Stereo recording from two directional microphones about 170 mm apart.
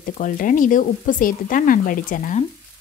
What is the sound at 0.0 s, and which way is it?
Speech, 55° left (ahead or behind).